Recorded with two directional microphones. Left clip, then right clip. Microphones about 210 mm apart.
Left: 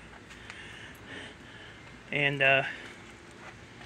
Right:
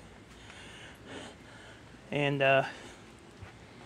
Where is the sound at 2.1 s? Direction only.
35° right (ahead or behind).